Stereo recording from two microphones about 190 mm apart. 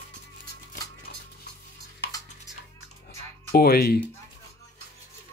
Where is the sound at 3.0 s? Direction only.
55° left (ahead or behind).